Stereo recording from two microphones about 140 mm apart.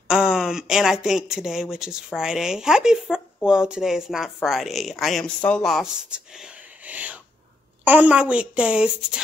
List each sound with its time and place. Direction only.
0.1 s a child's voice: 5° right (ahead or behind)